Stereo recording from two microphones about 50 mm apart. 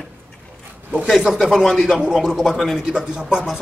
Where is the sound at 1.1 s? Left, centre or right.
Centre.